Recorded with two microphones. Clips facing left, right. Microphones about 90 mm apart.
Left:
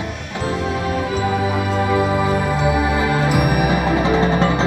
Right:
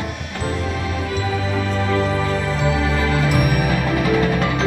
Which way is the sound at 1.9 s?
15° left (ahead or behind).